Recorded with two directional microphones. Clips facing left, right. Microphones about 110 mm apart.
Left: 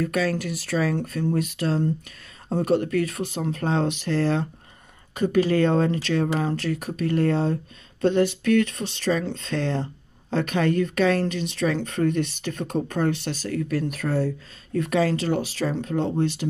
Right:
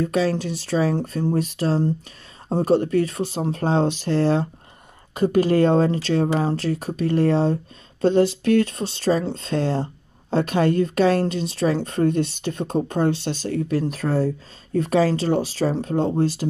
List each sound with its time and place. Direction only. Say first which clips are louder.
0.0 s a woman's voice: right 3 dB; 30° right (ahead or behind)